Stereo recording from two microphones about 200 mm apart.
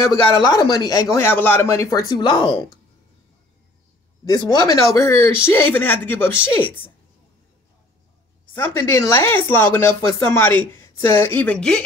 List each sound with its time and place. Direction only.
0.1 s speech: 20° left (ahead or behind)
4.2 s speech: 20° left (ahead or behind)
8.5 s speech: 10° left (ahead or behind)